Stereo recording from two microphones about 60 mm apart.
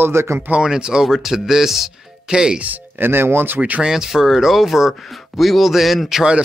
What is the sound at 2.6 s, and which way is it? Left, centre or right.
Speech, right.